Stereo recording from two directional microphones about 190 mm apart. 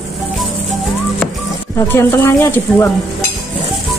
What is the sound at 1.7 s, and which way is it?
Speech, 10° left (ahead or behind).